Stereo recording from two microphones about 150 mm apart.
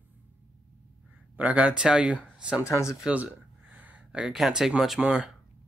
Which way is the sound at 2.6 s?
20° left (ahead or behind).